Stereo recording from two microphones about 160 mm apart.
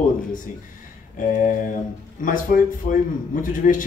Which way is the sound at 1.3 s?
55° left (ahead or behind).